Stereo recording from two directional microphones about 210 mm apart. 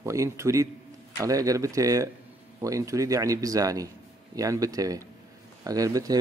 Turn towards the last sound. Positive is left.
turn(degrees=-15)  # may be behind; listen again after turning